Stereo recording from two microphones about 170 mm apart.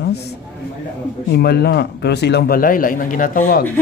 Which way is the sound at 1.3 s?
70° left (ahead or behind).